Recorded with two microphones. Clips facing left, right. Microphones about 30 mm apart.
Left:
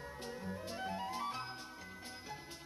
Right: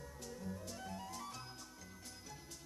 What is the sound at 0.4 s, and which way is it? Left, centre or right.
Music, left.